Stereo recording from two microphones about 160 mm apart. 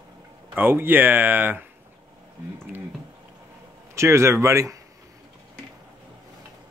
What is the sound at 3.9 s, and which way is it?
Speech, 15° right (ahead or behind).